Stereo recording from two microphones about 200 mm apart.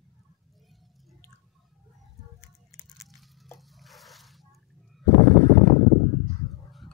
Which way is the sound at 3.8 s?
Centre (ahead or behind).